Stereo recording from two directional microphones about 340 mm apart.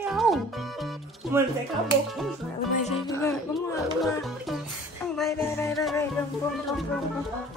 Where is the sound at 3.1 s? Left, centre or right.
Centre.